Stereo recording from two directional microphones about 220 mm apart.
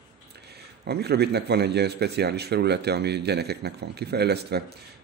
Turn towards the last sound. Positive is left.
turn(degrees=-50)  # may be behind; listen again after turning